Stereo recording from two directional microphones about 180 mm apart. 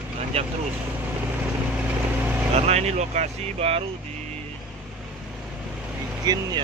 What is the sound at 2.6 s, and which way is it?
Speech, 35° right (ahead or behind).